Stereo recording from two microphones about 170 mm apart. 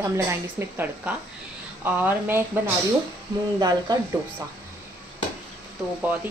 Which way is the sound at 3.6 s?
25° right (ahead or behind).